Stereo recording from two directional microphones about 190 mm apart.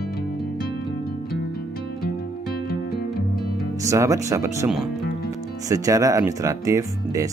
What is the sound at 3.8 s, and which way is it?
Speech, 15° right (ahead or behind).